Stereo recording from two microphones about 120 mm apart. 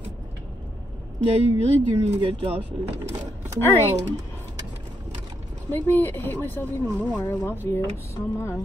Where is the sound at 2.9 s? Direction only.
65° right (ahead or behind).